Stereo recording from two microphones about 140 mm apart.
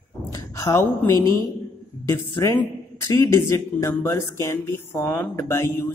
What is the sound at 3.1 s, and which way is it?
Speech, 20° left (ahead or behind).